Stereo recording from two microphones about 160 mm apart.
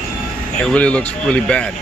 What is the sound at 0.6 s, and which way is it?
Speech, 5° left (ahead or behind).